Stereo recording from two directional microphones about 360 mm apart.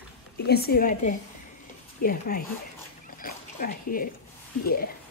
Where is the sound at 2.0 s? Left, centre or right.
Left.